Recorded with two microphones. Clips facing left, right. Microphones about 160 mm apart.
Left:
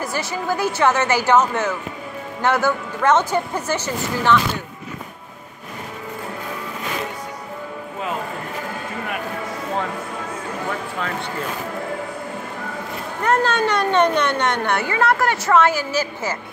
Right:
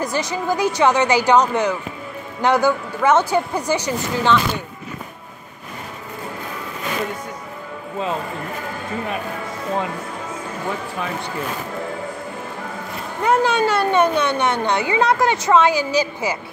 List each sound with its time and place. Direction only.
0.0 s a woman's voice: 20° right (ahead or behind)
13.2 s a woman's voice: 10° right (ahead or behind)